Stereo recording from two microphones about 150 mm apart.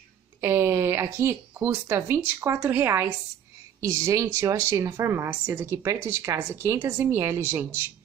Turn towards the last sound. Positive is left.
turn(degrees=-15)  # may be behind; listen again after turning